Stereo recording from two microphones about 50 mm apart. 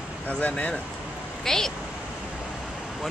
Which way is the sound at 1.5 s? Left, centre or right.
Centre.